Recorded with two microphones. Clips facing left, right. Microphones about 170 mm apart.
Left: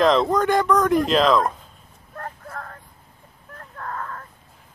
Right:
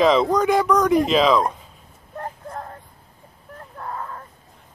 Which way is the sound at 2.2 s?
20° right (ahead or behind).